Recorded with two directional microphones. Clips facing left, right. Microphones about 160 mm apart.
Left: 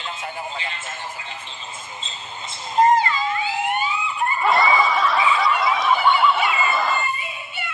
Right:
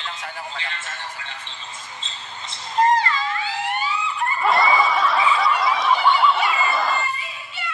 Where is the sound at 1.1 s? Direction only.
10° left (ahead or behind).